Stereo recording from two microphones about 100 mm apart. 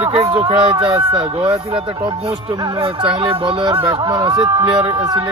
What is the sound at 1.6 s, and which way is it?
Music, 70° right (ahead or behind).